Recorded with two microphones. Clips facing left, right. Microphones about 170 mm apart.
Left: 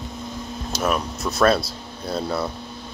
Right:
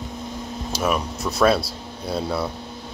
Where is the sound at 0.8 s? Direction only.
5° right (ahead or behind).